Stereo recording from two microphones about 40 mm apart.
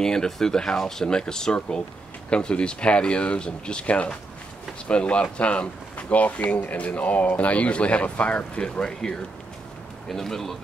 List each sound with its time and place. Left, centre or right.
0.0 s speech: centre; by 8.5 s left
8.5 s speech: left
10.0 s speech: centre